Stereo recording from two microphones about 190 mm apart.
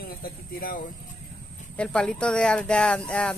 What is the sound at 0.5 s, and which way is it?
Speech, 50° left (ahead or behind).